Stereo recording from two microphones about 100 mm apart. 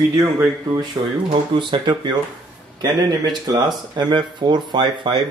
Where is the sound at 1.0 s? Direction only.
45° right (ahead or behind).